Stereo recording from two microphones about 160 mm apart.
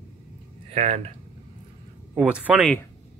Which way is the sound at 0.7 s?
40° right (ahead or behind).